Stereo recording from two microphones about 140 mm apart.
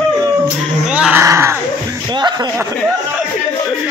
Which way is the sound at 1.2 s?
20° right (ahead or behind).